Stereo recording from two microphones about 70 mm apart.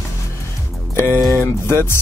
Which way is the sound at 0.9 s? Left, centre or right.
Left.